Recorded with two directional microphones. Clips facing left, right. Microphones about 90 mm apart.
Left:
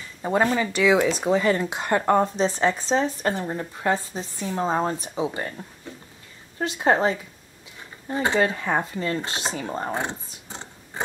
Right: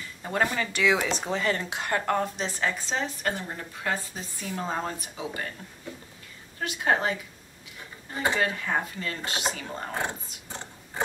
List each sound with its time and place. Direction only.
0.2 s speech: 20° left (ahead or behind)
6.6 s speech: 30° left (ahead or behind)
10.0 s a sound: 20° left (ahead or behind)